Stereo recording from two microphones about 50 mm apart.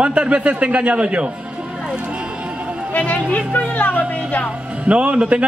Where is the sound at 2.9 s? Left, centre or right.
Left.